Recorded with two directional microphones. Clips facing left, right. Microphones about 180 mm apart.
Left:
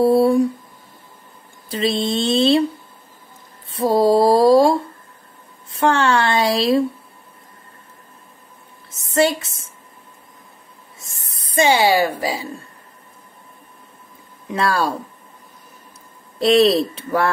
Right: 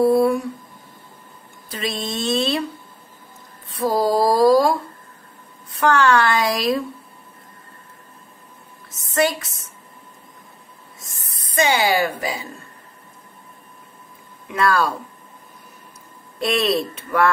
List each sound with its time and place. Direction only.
0.0 s speech: 30° left (ahead or behind)
1.7 s speech: 30° left (ahead or behind)
3.7 s speech: 25° left (ahead or behind)
9.1 s speech: 25° left (ahead or behind)
11.0 s a sound: 30° left (ahead or behind)
14.5 s speech: 30° left (ahead or behind)
16.3 s speech: 30° left (ahead or behind)